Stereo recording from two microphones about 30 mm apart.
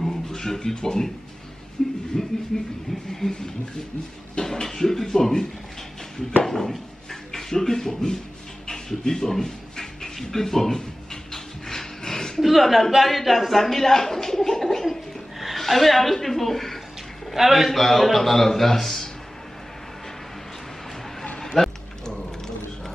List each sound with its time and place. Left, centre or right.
0.3 s speech: left
1.8 s a man's voice: centre
8.6 s dog: centre
10.1 s a man's voice: centre
12.0 s a sound: left
12.4 s speech: centre
13.6 s a sound: centre
15.5 s speech: centre
17.4 s a man's voice: centre
17.6 s a man's voice: centre
21.5 s speech: centre